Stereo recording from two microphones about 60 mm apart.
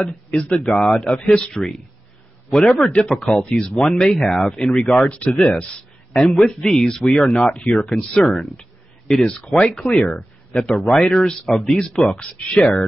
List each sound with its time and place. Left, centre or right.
0.0 s speech: centre
3.4 s speech: centre
6.1 s speech: centre; by 10.2 s left
10.5 s speech: centre